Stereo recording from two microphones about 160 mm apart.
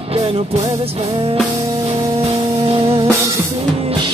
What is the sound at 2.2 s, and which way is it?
Music, 35° right (ahead or behind).